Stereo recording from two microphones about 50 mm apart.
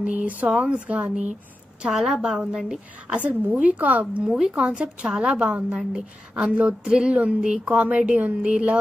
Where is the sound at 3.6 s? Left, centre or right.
Right.